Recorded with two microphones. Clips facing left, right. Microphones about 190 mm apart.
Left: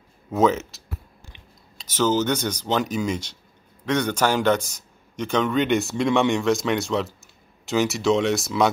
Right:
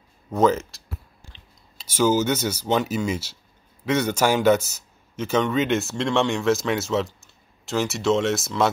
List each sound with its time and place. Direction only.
0.3 s speech: centre (ahead or behind)
1.8 s a man's voice: 10° right (ahead or behind)